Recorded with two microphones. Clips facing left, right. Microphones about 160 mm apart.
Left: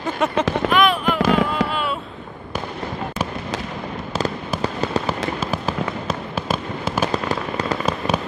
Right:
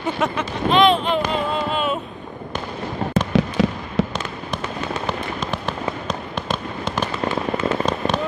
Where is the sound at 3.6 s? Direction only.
90° right.